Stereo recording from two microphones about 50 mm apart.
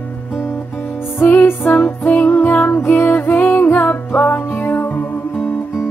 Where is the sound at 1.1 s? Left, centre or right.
Left.